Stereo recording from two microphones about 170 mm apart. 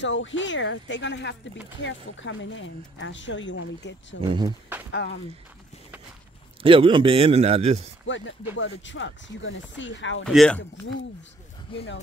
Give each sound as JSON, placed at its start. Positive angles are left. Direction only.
{"t": 0.0, "sound": "speech", "side_deg": 90}
{"t": 4.2, "sound": "speech", "side_deg": -25}
{"t": 4.9, "sound": "speech", "side_deg": 90}
{"t": 6.6, "sound": "a man's voice", "side_deg": -30}
{"t": 8.5, "sound": "speech", "side_deg": 90}
{"t": 10.2, "sound": "speech", "side_deg": 5}